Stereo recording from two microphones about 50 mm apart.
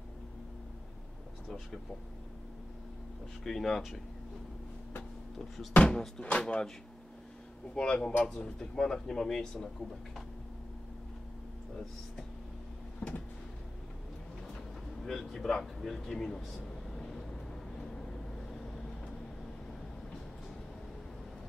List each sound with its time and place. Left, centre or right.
3.4 s speech: centre
5.8 s music: centre
6.4 s speech: centre
7.7 s speech: centre
13.0 s a sound: left
15.0 s a sound: centre